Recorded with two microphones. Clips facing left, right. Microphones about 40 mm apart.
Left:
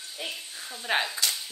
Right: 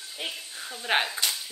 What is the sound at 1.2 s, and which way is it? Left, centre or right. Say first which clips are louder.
Whip: even; right.